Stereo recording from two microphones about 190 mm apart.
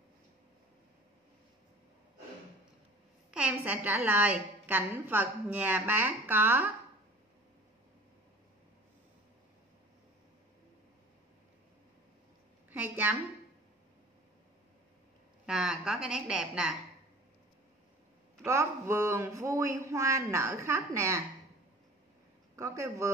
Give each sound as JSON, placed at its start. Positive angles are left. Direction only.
{"t": 3.3, "sound": "a woman's voice", "side_deg": -5}
{"t": 12.7, "sound": "a woman's voice", "side_deg": -10}
{"t": 15.4, "sound": "a woman's voice", "side_deg": -5}
{"t": 18.4, "sound": "a woman's voice", "side_deg": -15}
{"t": 22.6, "sound": "a woman's voice", "side_deg": -15}